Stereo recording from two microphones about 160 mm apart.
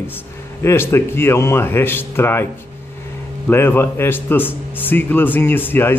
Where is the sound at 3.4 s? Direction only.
15° left (ahead or behind).